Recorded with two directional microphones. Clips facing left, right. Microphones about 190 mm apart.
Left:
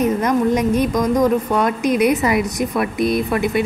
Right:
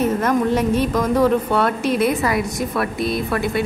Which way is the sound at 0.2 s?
15° left (ahead or behind).